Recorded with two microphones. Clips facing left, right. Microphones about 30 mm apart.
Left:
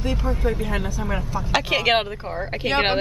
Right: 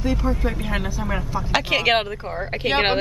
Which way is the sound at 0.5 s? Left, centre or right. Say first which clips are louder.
Left 1 dB; centre.